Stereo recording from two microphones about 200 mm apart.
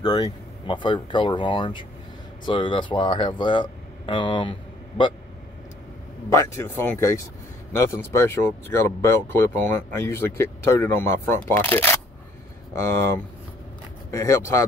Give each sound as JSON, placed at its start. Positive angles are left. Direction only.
{"t": 0.0, "sound": "speech", "side_deg": 20}
{"t": 6.3, "sound": "speech", "side_deg": 15}